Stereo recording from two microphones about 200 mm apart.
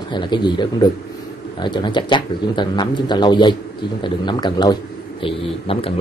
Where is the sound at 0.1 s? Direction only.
20° left (ahead or behind).